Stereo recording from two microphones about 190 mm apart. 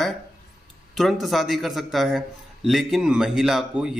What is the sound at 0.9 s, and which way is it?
A man's voice, centre (ahead or behind).